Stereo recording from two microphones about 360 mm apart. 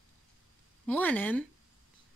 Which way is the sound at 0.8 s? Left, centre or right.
Centre.